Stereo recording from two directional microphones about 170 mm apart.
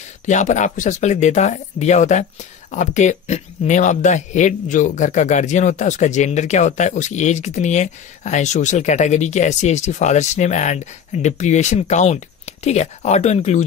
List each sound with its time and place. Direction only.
0.3 s speech: 45° left (ahead or behind)